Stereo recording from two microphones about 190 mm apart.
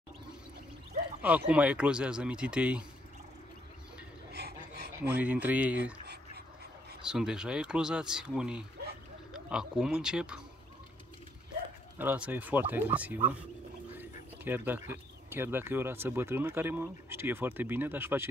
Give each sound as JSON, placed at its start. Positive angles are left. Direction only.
{"t": 1.2, "sound": "speech", "side_deg": -5}
{"t": 4.3, "sound": "a sound", "side_deg": -55}
{"t": 5.1, "sound": "speech", "side_deg": -10}
{"t": 7.1, "sound": "speech", "side_deg": -5}
{"t": 12.0, "sound": "speech", "side_deg": -10}